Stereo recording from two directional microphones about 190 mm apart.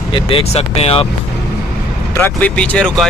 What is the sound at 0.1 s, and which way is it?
Speech, 30° left (ahead or behind).